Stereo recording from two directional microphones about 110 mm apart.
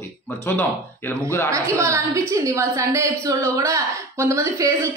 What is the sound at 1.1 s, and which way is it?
Speech, 20° left (ahead or behind).